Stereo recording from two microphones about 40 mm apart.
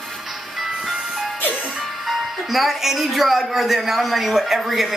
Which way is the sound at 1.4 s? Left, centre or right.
Left.